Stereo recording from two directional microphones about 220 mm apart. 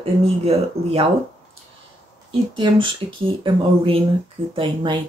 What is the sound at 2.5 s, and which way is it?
Speech, 20° right (ahead or behind).